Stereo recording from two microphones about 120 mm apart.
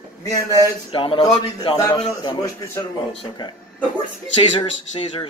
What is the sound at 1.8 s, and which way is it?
Speech, 30° left (ahead or behind).